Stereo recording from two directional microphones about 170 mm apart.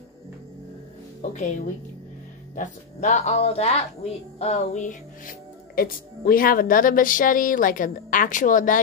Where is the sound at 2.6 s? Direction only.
40° left (ahead or behind).